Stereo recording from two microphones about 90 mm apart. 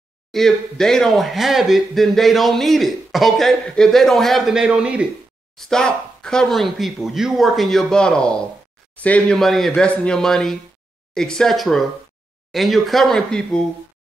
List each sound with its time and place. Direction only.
0.3 s speech: 5° left (ahead or behind); by 5.0 s 10° right (ahead or behind)
5.6 s speech: 5° left (ahead or behind)
9.4 s speech: centre (ahead or behind)